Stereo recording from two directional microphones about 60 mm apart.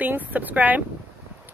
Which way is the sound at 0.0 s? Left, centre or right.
Right.